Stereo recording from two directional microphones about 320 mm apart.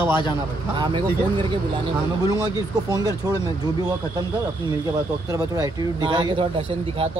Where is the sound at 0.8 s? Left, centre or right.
Centre.